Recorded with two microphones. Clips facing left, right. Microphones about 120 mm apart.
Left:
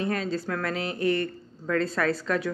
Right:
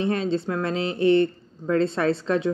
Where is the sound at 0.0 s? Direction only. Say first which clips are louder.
Right 4 dB; 25° right (ahead or behind).